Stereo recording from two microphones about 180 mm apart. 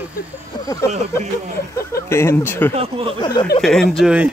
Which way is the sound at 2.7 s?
30° right (ahead or behind).